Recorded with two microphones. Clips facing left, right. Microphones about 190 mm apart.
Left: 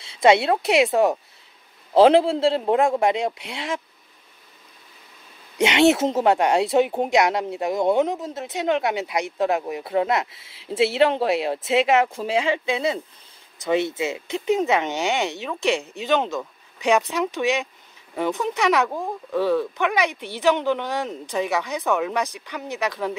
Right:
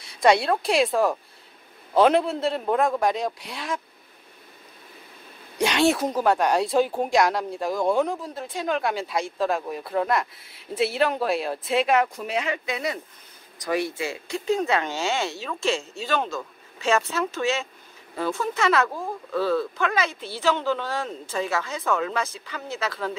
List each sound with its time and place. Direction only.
0.0 s a woman's voice: 25° left (ahead or behind)
5.6 s speech: 20° left (ahead or behind)